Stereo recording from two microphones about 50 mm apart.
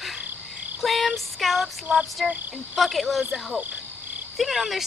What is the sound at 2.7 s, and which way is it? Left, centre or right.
Speech, centre.